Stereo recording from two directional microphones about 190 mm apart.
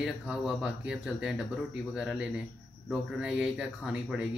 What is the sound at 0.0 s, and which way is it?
Speech, 5° right (ahead or behind).